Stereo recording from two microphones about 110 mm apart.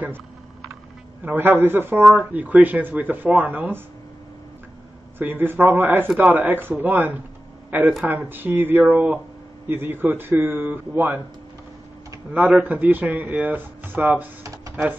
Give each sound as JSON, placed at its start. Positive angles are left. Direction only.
{"t": 1.2, "sound": "speech", "side_deg": -20}
{"t": 5.2, "sound": "speech", "side_deg": -20}
{"t": 12.3, "sound": "speech", "side_deg": -15}